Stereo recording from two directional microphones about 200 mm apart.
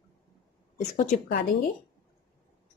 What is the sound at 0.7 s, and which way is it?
Speech, 35° left (ahead or behind).